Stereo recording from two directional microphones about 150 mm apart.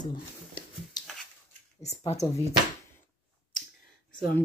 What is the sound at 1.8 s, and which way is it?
Speech, 45° left (ahead or behind).